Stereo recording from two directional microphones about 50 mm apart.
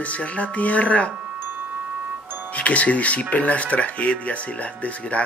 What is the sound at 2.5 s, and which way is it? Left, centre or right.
Speech, left.